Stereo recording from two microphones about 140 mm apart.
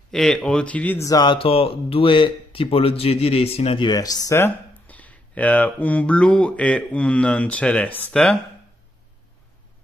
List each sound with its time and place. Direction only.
0.1 s speech: 5° left (ahead or behind)
1.0 s speech: 30° left (ahead or behind); by 8.4 s 5° left (ahead or behind)